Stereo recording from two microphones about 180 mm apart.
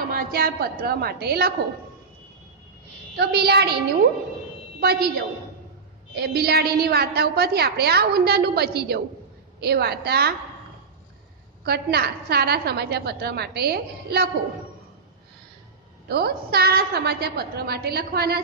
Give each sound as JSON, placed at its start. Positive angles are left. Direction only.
{"t": 0.1, "sound": "a woman's voice", "side_deg": -55}
{"t": 3.2, "sound": "a woman's voice", "side_deg": -60}
{"t": 11.6, "sound": "a woman's voice", "side_deg": -60}
{"t": 16.1, "sound": "a woman's voice", "side_deg": -60}